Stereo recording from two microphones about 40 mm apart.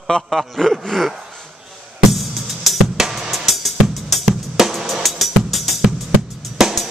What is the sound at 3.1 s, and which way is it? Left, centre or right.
Drum kit, centre.